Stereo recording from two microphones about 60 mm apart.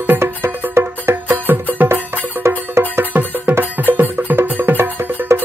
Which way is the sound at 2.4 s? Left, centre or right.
Right.